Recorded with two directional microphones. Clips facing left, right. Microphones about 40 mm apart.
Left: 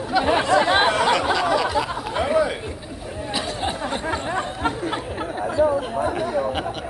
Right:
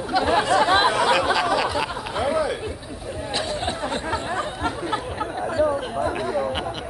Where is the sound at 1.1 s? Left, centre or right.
Centre.